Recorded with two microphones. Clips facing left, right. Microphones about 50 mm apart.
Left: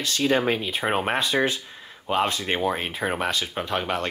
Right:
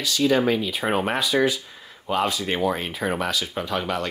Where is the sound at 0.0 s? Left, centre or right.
Left.